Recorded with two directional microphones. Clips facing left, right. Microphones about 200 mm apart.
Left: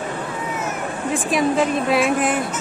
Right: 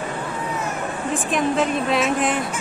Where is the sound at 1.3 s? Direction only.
5° left (ahead or behind).